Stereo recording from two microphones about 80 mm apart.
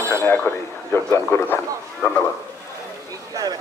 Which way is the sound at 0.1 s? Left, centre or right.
Left.